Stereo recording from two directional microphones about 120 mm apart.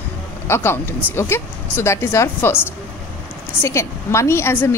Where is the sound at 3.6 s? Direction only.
25° left (ahead or behind).